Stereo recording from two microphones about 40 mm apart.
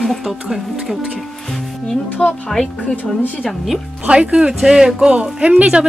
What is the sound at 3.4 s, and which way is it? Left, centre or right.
Speech, centre.